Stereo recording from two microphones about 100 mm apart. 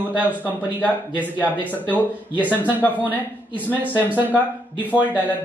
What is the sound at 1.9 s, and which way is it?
Speech, 15° left (ahead or behind).